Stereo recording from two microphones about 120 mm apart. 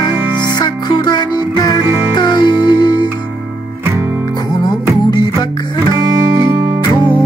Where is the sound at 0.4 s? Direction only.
35° left (ahead or behind).